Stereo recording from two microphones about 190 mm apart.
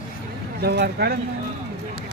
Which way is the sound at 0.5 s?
60° right (ahead or behind).